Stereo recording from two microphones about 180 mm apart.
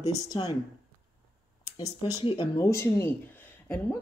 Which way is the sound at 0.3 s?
25° left (ahead or behind).